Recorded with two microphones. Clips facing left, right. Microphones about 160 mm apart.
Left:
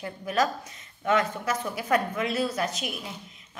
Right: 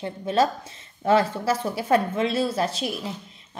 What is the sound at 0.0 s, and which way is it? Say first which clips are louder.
A woman's voice: right 4 dB; 25° right (ahead or behind).